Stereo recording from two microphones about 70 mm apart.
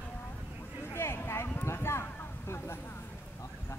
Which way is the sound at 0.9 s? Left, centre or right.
Left.